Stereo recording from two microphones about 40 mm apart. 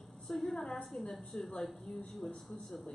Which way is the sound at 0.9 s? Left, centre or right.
Left.